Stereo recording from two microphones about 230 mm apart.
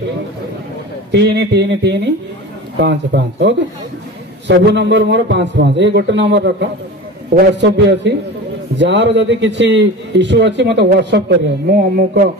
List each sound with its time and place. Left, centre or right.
1.1 s a man's voice: right